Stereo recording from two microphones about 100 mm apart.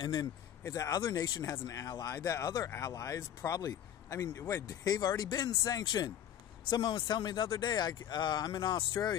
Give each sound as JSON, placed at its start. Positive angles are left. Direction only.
{"t": 0.0, "sound": "speech", "side_deg": 45}
{"t": 1.4, "sound": "speech", "side_deg": 35}
{"t": 4.9, "sound": "speech", "side_deg": 40}